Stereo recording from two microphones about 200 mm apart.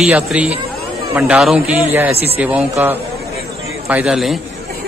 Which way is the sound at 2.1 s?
30° right (ahead or behind).